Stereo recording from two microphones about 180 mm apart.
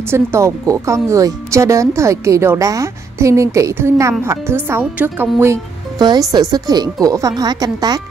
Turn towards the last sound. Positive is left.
turn(degrees=-20)  # may be behind; listen again after turning